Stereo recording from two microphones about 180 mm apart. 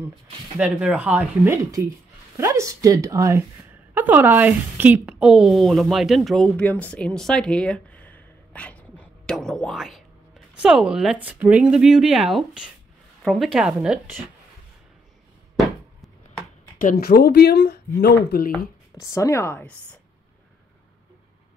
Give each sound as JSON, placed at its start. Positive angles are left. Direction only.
{"t": 0.6, "sound": "a woman's voice", "side_deg": -5}
{"t": 16.8, "sound": "speech", "side_deg": 60}
{"t": 18.9, "sound": "speech", "side_deg": 15}